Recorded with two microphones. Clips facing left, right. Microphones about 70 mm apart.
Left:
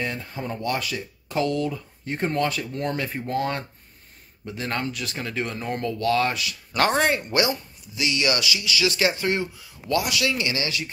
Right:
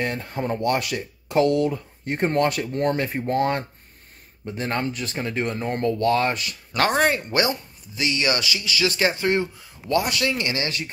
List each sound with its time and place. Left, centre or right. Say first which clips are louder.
0.0 s speech: right 4 dB; right
4.5 s speech: right 2 dB; right
6.9 s speech: right 3 dB; centre
8.0 s speech: right 1 dB; right